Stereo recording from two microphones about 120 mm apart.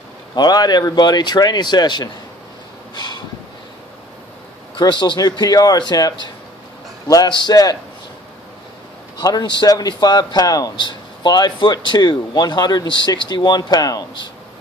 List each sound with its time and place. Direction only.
0.4 s a man's voice: 35° left (ahead or behind)
2.9 s snort: 40° left (ahead or behind)
4.7 s a man's voice: 40° left (ahead or behind)
9.2 s a man's voice: 35° left (ahead or behind)